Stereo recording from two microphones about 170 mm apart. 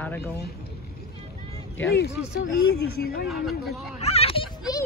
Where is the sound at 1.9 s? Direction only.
75° left (ahead or behind).